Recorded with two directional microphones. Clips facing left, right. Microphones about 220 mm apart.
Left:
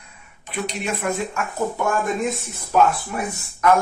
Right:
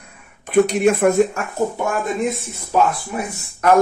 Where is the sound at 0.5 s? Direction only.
50° right (ahead or behind).